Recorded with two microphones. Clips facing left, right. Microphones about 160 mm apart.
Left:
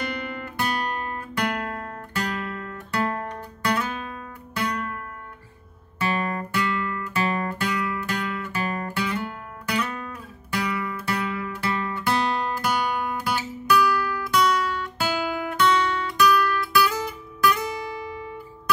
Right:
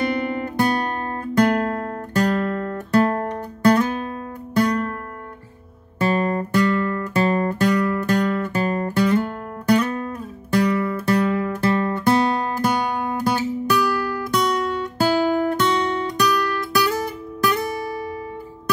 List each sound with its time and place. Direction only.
0.0 s guitar: 50° right (ahead or behind)
5.9 s guitar: 45° right (ahead or behind)
13.2 s guitar: 45° right (ahead or behind)